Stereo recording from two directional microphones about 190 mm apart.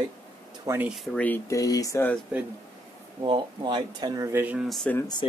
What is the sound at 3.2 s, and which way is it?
Speech, 25° right (ahead or behind).